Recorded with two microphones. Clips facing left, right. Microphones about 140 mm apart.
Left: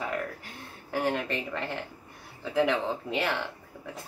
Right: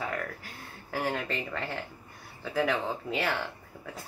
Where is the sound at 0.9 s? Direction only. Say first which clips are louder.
Left 3 dB; 20° left (ahead or behind).